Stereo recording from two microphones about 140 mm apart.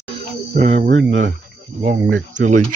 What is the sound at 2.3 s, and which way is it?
Cricket, 65° right (ahead or behind).